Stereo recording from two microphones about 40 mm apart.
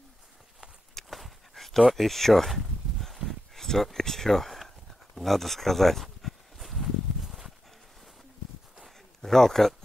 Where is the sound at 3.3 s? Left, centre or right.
Centre.